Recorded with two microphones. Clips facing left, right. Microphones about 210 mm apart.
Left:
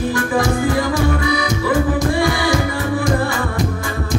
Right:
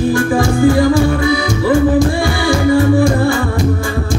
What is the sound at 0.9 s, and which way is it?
Music, 30° right (ahead or behind).